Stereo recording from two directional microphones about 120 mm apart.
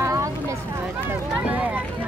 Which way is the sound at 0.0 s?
25° right (ahead or behind).